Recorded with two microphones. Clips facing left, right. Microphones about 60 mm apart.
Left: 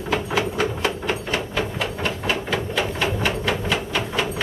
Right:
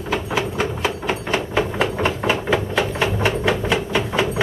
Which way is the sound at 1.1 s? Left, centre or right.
Right.